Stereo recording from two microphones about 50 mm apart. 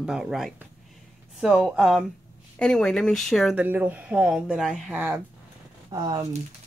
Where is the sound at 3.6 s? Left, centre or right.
Right; by 4.8 s centre.